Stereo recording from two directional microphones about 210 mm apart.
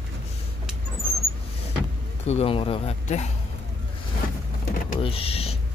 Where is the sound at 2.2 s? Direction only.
30° left (ahead or behind).